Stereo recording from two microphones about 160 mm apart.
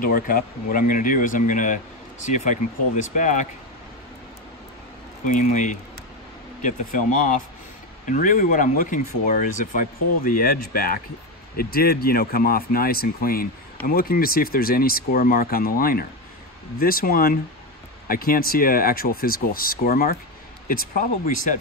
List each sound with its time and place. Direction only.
0.0 s speech: 65° left (ahead or behind)
5.2 s speech: 50° left (ahead or behind)